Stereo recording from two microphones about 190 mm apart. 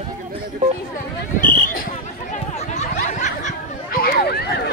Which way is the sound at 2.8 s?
40° left (ahead or behind).